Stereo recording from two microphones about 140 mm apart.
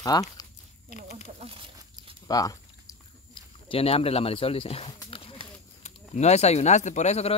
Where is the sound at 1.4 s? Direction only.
40° right (ahead or behind).